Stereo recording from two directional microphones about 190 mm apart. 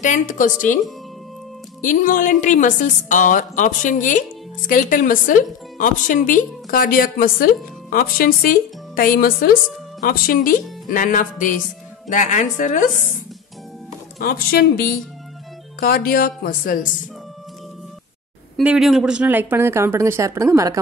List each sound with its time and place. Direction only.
0.0 s speech: 40° left (ahead or behind)
1.8 s speech: 45° left (ahead or behind)
14.2 s speech: 50° left (ahead or behind)
18.6 s speech: 5° right (ahead or behind)